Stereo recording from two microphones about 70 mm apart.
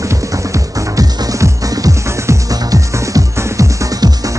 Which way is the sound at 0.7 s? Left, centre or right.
Right.